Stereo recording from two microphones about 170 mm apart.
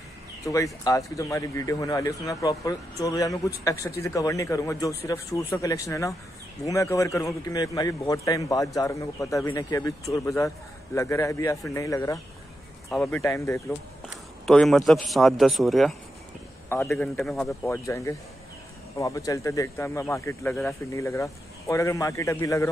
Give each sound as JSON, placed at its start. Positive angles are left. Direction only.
{"t": 0.5, "sound": "a man's voice", "side_deg": 20}
{"t": 12.9, "sound": "a man's voice", "side_deg": 5}
{"t": 13.2, "sound": "speech", "side_deg": 15}
{"t": 14.4, "sound": "a man's voice", "side_deg": 0}
{"t": 16.9, "sound": "speech", "side_deg": 15}
{"t": 17.2, "sound": "a man's voice", "side_deg": 0}
{"t": 17.5, "sound": "speech", "side_deg": 20}